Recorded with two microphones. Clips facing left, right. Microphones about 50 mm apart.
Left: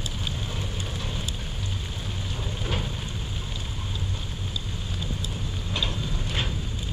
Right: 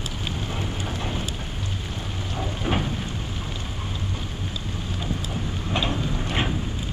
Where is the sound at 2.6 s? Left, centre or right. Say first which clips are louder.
Right 6 dB; right.